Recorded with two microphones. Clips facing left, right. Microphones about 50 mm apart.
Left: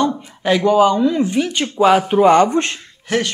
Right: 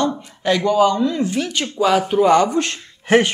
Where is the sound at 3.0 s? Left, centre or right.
Right.